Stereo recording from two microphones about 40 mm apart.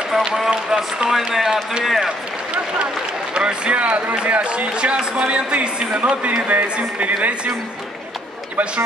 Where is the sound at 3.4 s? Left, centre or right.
Right.